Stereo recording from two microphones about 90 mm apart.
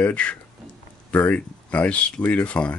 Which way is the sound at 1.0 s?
15° left (ahead or behind).